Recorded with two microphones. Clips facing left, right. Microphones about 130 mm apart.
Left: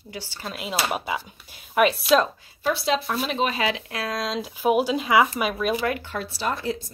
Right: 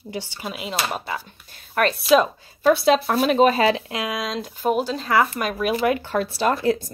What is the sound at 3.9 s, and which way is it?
Speech, 15° right (ahead or behind).